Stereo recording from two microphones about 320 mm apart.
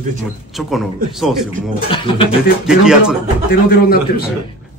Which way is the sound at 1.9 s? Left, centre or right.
Centre.